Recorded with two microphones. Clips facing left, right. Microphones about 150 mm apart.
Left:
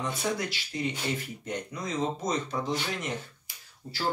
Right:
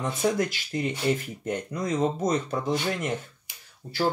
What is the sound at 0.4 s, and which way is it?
Speech, 50° right (ahead or behind).